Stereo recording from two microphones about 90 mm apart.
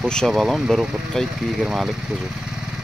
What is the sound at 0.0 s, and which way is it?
Speech, 10° left (ahead or behind).